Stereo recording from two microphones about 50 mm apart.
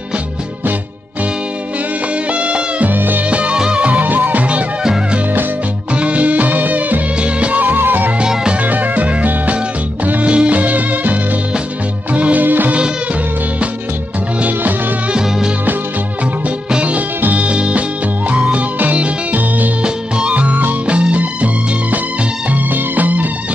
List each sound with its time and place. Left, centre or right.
2.3 s music: right
2.9 s music: right
3.3 s music: right
5.9 s music: right
7.2 s music: right
8.2 s music: centre
8.6 s music: right
15.1 s music: centre
16.4 s music: right
19.8 s music: centre
22.5 s music: right